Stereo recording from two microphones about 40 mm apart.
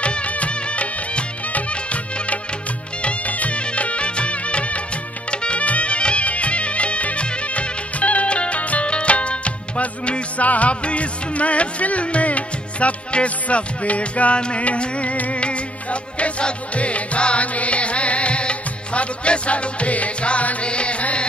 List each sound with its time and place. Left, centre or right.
0.0 s music: left